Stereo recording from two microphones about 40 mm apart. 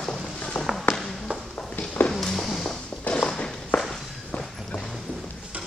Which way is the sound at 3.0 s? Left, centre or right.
Left.